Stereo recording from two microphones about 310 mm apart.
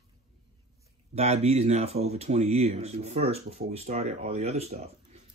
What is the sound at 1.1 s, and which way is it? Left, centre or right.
Speech, centre.